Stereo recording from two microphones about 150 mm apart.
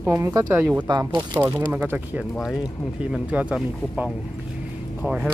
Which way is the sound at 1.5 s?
10° right (ahead or behind).